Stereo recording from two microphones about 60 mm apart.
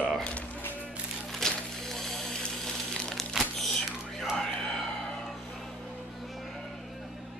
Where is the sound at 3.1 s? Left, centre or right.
Centre.